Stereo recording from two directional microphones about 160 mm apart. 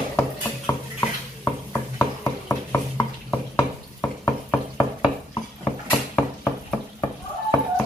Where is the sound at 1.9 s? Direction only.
15° left (ahead or behind).